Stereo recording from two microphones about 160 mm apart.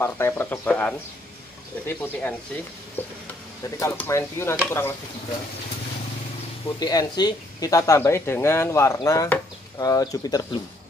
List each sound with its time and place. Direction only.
0.0 s speech: 15° left (ahead or behind)
3.0 s a sound: 10° left (ahead or behind)
3.8 s speech: 15° left (ahead or behind)
6.8 s speech: 25° left (ahead or behind)